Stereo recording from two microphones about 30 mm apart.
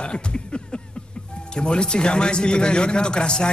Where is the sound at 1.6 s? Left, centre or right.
Left.